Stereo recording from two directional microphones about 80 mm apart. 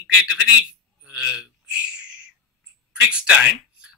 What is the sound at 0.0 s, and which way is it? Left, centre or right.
A man's voice, centre.